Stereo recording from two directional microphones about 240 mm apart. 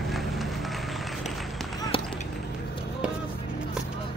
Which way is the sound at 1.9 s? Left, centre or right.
Left.